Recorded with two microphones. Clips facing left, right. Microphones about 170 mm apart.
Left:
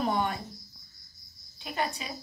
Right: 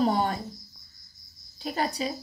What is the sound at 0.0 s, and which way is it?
Speech, 35° right (ahead or behind).